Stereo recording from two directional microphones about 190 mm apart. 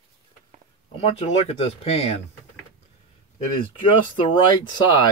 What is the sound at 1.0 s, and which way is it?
Speech, 30° left (ahead or behind).